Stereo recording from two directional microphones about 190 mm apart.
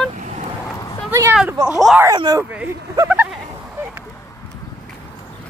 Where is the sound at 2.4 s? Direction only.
10° right (ahead or behind).